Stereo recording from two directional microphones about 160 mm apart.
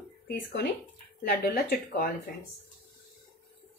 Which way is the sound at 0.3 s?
80° left.